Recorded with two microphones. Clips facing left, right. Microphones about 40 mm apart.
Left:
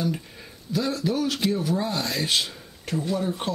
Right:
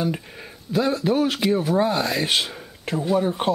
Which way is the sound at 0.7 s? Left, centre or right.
Right.